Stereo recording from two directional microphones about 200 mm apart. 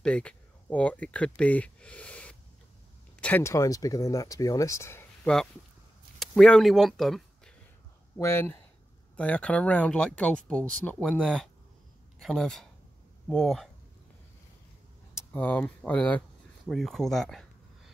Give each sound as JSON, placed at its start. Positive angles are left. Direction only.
{"t": 0.0, "sound": "speech", "side_deg": 5}
{"t": 8.2, "sound": "speech", "side_deg": 10}
{"t": 15.1, "sound": "a sound", "side_deg": 10}